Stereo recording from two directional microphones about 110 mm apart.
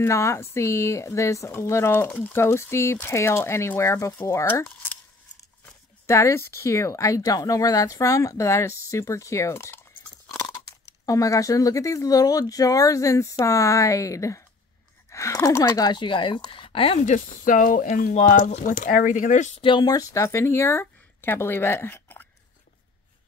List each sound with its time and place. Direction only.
0.0 s speech: 25° left (ahead or behind)
6.0 s speech: 25° left (ahead or behind)
11.1 s speech: 30° left (ahead or behind); by 17.1 s 60° left (ahead or behind)
17.8 s speech: 90° left
19.6 s speech: 45° left (ahead or behind); by 22.3 s 20° left (ahead or behind)